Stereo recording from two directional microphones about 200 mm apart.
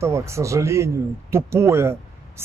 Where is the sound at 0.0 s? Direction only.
15° right (ahead or behind).